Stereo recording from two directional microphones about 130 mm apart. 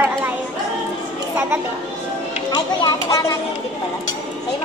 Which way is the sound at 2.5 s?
30° left (ahead or behind).